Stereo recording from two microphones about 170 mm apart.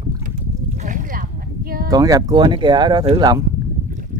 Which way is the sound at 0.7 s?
50° right (ahead or behind).